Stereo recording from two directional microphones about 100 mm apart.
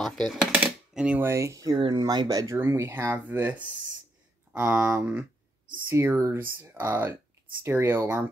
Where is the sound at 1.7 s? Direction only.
50° right (ahead or behind).